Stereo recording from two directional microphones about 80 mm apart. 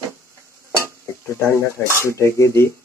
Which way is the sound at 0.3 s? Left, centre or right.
Right.